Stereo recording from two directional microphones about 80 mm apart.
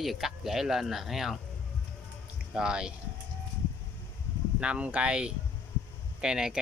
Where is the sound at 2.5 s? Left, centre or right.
Centre.